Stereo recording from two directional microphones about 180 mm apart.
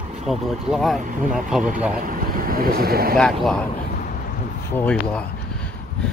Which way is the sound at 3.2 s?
Centre (ahead or behind).